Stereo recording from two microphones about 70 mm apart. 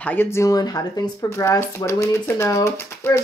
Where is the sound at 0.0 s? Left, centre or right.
Left.